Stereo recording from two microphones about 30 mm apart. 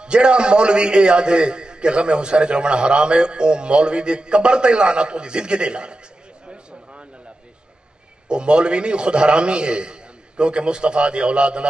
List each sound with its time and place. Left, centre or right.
0.0 s a man's voice: right
6.4 s a sound: right
8.3 s a man's voice: right